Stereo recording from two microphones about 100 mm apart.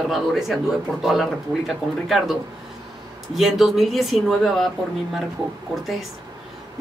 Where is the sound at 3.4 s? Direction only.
Centre (ahead or behind).